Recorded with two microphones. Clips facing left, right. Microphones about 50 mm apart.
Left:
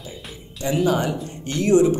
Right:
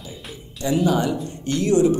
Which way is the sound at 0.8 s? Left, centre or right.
Left.